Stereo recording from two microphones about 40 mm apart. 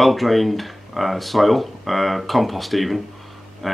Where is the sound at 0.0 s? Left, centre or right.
Centre.